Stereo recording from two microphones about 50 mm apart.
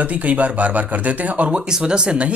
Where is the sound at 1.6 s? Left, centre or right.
Centre.